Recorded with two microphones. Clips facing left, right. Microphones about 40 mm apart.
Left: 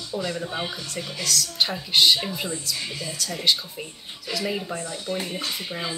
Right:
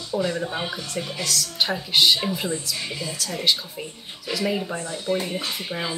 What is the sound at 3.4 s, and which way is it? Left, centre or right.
Speech, centre.